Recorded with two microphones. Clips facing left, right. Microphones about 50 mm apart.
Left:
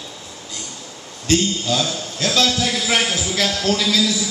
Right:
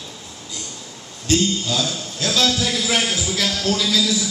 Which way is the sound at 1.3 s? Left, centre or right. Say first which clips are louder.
Left 1 dB; left.